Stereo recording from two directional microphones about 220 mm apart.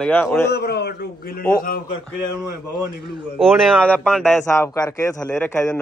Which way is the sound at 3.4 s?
Centre (ahead or behind).